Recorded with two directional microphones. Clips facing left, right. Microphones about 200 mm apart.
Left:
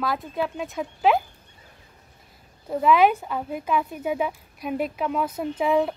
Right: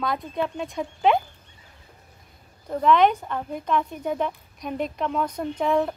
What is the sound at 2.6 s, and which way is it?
Speech, 5° left (ahead or behind).